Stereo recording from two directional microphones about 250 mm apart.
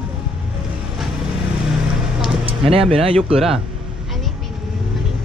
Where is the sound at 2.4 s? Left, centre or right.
Right.